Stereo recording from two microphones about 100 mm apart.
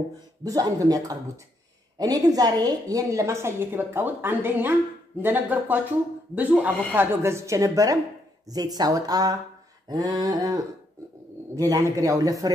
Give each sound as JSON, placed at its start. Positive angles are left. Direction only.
{"t": 0.4, "sound": "a woman's voice", "side_deg": -35}